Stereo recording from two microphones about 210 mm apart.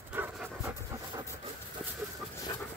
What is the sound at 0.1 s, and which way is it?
Pant, 10° right (ahead or behind).